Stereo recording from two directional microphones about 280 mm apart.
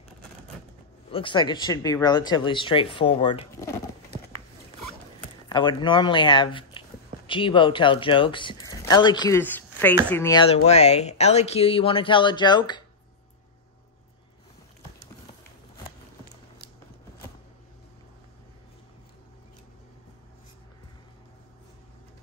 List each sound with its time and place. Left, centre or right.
1.1 s speech: centre
5.5 s speech: centre